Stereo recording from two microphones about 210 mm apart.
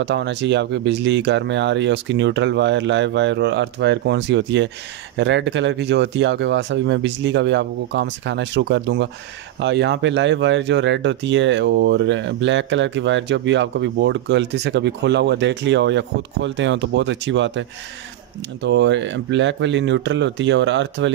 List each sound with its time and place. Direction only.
0.0 s speech: 55° right (ahead or behind)